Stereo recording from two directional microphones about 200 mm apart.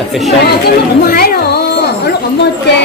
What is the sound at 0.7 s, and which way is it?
Chatter, 50° left (ahead or behind).